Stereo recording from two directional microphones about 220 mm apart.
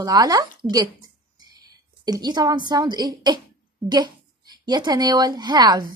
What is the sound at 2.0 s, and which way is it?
A woman's voice, 20° right (ahead or behind).